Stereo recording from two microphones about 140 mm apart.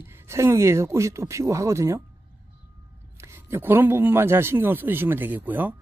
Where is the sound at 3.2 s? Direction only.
15° right (ahead or behind).